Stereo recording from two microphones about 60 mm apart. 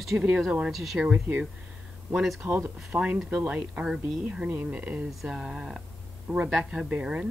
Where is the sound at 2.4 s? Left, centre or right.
Right.